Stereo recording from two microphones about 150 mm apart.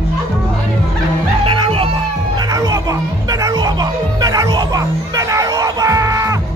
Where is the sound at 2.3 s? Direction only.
25° right (ahead or behind).